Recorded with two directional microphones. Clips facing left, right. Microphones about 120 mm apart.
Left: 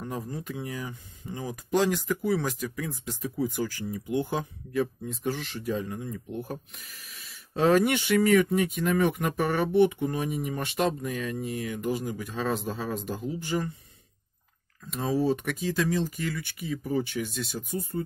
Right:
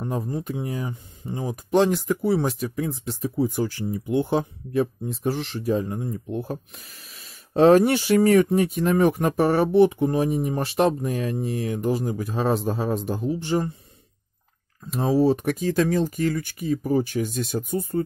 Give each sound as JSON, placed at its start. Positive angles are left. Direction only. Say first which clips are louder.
{"t": 0.0, "sound": "speech", "louder": "right 6 dB", "side_deg": -30}
{"t": 15.1, "sound": "speech", "louder": "right 6 dB", "side_deg": -35}